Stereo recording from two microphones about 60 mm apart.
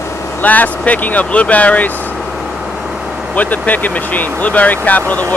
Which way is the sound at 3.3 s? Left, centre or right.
Left.